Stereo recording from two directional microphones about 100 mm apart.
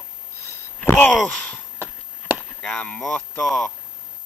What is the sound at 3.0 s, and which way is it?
Speech, 5° left (ahead or behind).